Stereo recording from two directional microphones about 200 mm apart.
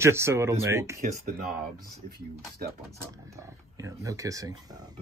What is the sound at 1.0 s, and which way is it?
Speech, 40° right (ahead or behind).